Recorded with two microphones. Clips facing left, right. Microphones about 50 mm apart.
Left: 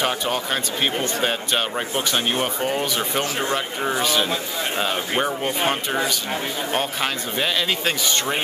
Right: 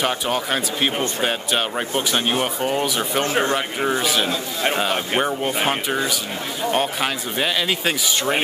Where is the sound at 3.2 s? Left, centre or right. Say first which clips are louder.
Right 7 dB; right.